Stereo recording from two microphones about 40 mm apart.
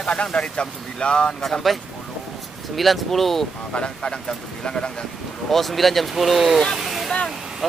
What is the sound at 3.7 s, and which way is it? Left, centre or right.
Speech, left.